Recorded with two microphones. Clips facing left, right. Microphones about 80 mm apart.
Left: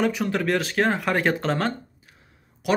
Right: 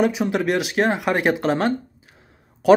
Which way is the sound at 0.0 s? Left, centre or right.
Centre.